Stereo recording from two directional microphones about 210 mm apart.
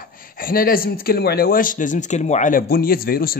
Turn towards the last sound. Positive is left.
turn(degrees=45)  # may be behind; listen again after turning